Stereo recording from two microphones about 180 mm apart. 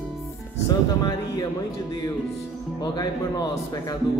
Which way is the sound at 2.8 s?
20° left (ahead or behind).